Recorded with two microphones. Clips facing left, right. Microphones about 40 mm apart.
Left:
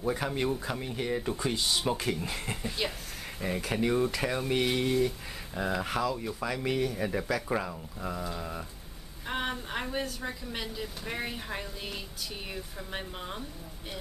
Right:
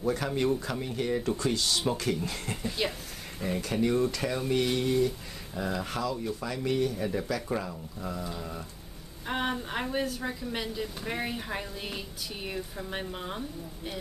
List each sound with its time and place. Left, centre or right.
0.0 s speech: centre
9.2 s a woman's voice: centre